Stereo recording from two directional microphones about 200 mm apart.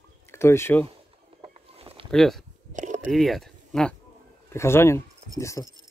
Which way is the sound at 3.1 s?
Centre (ahead or behind).